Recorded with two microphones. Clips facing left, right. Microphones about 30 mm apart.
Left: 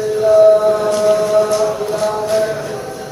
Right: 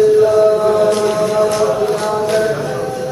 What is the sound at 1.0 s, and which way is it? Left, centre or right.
Mantra, centre.